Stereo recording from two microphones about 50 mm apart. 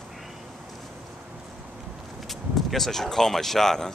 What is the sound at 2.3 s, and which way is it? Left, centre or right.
Speech, centre.